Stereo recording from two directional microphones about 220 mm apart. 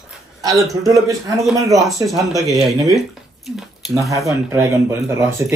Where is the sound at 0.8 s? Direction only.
15° right (ahead or behind).